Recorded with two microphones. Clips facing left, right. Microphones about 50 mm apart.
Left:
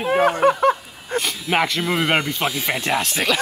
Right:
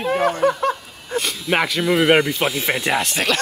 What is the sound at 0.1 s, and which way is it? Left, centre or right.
Speech, left.